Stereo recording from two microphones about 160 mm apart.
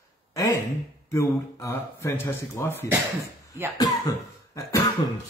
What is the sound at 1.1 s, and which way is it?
Speech, 20° left (ahead or behind).